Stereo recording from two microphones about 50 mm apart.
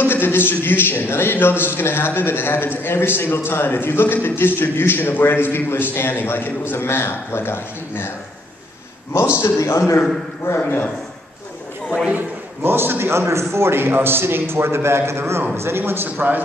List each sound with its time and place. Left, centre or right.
0.0 s a man's voice: left
9.1 s a man's voice: left
10.5 s a man's voice: left
12.1 s a man's voice: right